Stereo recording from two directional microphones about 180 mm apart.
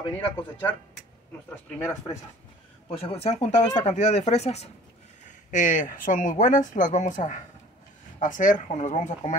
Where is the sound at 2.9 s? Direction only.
35° left (ahead or behind).